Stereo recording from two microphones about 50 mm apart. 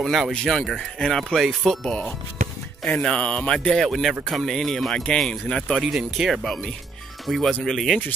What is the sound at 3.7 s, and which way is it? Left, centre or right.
Speech, centre.